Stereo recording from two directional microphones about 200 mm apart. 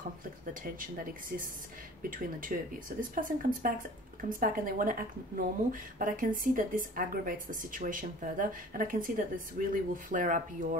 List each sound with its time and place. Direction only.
0.7 s a woman's voice: 45° right (ahead or behind)